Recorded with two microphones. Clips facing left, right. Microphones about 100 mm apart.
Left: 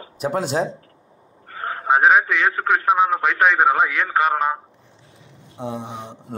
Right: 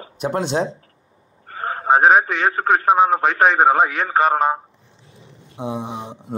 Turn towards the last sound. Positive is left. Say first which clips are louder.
# right 3 dB
turn(degrees=-10)  # may be behind; listen again after turning